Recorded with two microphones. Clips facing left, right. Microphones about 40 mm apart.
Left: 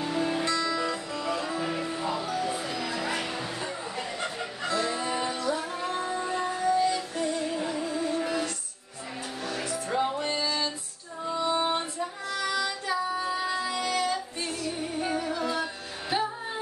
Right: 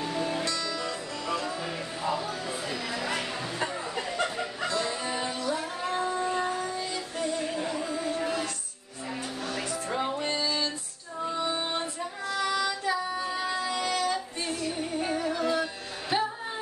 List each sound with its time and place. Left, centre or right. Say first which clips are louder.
0.0 s music: left 2 dB; centre
0.5 s music: left 4 dB; left
2.0 s music: left 1 dB; centre
3.0 s a sound: even; centre
4.6 s fowl: left 3 dB; centre
5.0 s music: left 2 dB; centre
9.8 s music: left 3 dB; centre
11.5 s female singing: left 4 dB; centre
14.7 s music: left 1 dB; centre